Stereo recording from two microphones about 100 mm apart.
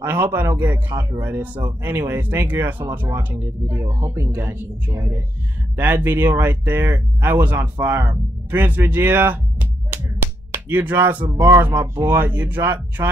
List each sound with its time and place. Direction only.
0.0 s speech: 25° right (ahead or behind)
3.6 s speech: 30° right (ahead or behind)